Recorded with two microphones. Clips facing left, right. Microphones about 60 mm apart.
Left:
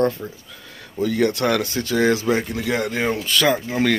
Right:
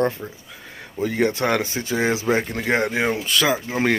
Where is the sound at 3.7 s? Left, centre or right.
Right.